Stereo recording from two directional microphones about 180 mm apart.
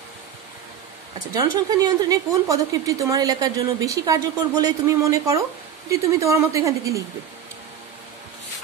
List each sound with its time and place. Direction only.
1.3 s a woman's voice: 20° right (ahead or behind)